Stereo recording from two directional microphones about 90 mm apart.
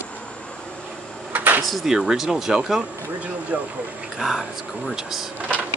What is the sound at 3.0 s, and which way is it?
Speech, 15° right (ahead or behind).